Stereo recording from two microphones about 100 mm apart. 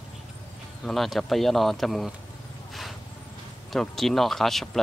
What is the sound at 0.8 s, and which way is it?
Speech, centre (ahead or behind).